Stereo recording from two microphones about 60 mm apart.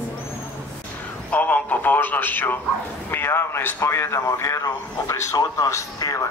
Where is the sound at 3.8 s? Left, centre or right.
Left.